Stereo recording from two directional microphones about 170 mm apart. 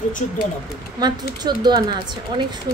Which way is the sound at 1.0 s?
25° right (ahead or behind).